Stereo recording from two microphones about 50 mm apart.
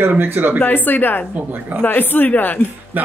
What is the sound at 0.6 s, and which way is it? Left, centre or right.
Speech, left.